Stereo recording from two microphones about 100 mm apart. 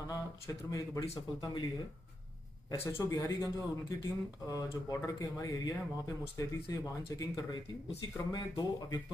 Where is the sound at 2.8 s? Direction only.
30° left (ahead or behind).